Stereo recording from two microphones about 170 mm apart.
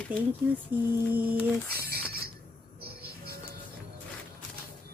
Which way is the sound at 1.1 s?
10° right (ahead or behind).